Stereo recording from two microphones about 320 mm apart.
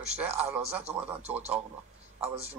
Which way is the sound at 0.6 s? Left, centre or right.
Centre.